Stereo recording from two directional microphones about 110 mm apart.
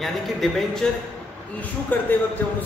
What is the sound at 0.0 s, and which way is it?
Speech, centre (ahead or behind).